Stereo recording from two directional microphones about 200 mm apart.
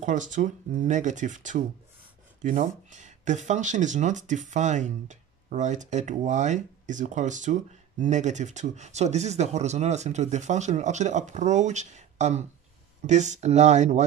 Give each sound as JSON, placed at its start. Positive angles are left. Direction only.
{"t": 0.0, "sound": "speech", "side_deg": -40}